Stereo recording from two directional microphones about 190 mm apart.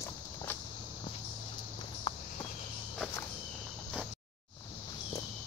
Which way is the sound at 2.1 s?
25° left (ahead or behind).